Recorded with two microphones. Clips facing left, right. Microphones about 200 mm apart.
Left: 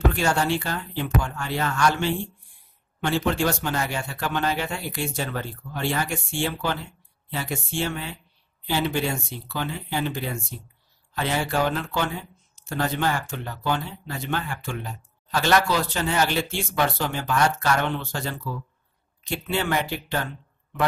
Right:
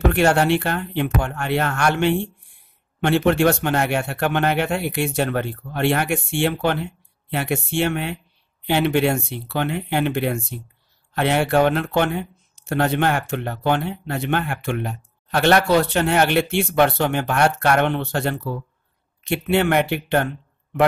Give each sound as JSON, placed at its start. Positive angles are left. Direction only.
{"t": 0.1, "sound": "speech", "side_deg": -65}